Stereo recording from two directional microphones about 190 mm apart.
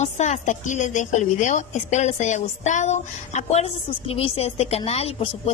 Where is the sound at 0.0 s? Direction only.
35° left (ahead or behind).